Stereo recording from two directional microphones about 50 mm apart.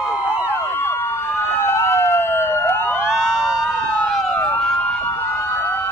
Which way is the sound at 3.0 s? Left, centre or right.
Centre.